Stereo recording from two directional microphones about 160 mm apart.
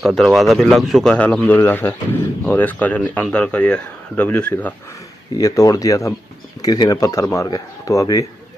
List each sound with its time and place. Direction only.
0.0 s a man's voice: centre (ahead or behind)
5.4 s speech: 20° left (ahead or behind)